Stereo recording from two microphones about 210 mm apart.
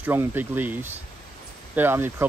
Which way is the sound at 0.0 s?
10° right (ahead or behind).